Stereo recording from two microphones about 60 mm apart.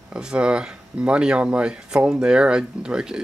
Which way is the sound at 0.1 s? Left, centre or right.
Centre.